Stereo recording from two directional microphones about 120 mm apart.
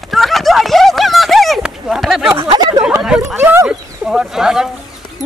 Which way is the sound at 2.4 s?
40° right (ahead or behind).